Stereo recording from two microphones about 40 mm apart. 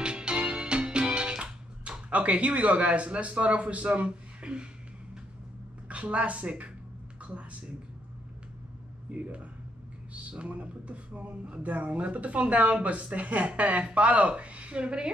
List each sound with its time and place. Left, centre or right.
0.0 s music: right
5.9 s speech: right
9.1 s speech: right